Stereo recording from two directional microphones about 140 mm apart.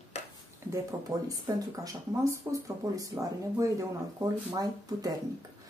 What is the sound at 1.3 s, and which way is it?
Speech, 25° right (ahead or behind).